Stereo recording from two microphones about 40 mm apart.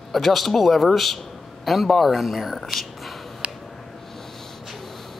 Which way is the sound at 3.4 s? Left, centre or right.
Right.